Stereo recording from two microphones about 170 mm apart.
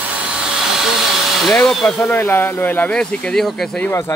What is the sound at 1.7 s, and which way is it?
A man's voice, 5° left (ahead or behind).